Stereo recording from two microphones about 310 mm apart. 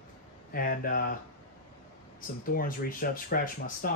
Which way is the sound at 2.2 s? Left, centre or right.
Left.